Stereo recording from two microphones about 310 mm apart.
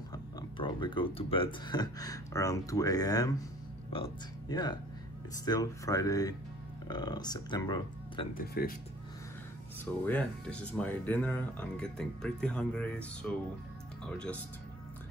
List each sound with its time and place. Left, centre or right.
0.1 s speech: centre
8.4 s speech: left
10.0 s speech: centre